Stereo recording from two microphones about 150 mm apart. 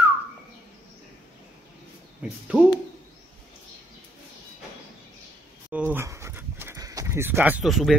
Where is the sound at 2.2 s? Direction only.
10° right (ahead or behind).